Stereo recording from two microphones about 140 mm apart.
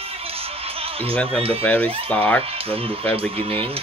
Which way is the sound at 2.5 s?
45° right (ahead or behind).